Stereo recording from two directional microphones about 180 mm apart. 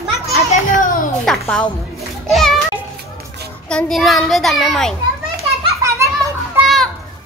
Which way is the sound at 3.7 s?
Centre (ahead or behind).